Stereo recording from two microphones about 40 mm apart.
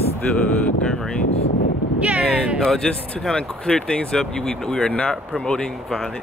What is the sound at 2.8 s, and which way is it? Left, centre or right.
Speech, centre.